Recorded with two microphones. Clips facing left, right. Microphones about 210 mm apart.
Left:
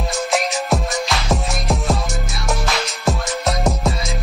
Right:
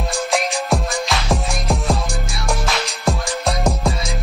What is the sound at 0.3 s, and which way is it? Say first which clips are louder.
Music: even; centre (ahead or behind).